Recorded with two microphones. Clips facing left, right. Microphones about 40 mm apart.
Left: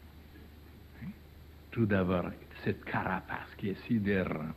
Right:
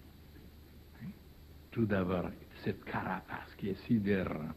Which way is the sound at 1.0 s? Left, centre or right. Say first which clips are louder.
Left 2 dB; left.